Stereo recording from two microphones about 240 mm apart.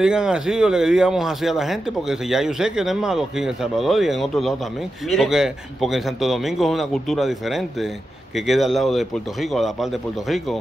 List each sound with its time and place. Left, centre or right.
0.0 s speech: centre